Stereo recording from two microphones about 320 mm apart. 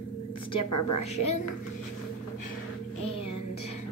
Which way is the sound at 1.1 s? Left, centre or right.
Left.